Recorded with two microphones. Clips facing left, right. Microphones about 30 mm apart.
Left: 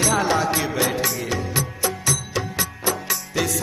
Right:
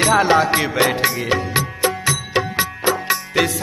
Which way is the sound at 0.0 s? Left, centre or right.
Right.